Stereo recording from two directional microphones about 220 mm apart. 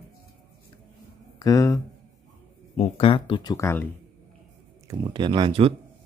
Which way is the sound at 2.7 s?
25° left (ahead or behind).